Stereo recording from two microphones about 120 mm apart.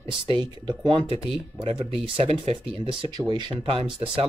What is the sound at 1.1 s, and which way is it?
Speech, 5° right (ahead or behind).